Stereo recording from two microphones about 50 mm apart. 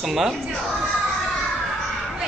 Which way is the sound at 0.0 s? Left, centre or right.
Centre.